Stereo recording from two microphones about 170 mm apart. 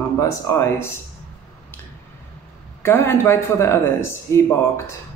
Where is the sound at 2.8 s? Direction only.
15° left (ahead or behind).